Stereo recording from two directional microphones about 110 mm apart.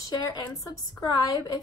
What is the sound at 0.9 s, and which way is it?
Speech, 35° left (ahead or behind).